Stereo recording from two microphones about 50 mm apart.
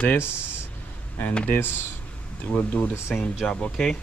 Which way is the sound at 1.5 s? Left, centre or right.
Left.